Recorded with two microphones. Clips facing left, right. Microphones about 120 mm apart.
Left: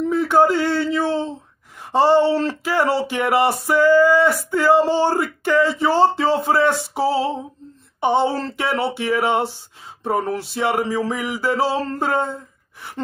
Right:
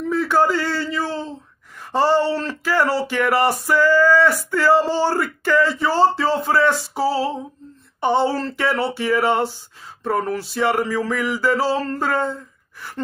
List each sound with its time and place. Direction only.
0.1 s a man's voice: 20° left (ahead or behind)